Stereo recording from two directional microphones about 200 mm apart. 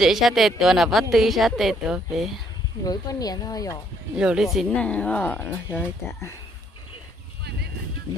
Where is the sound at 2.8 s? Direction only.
20° left (ahead or behind).